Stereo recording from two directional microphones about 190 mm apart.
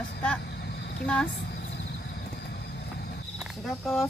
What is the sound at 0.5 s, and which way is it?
Vehicle, 60° left (ahead or behind).